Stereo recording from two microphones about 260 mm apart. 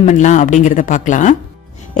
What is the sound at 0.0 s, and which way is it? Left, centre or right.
A woman's voice, left.